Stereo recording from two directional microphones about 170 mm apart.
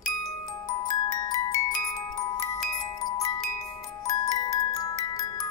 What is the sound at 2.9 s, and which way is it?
Music, 20° left (ahead or behind).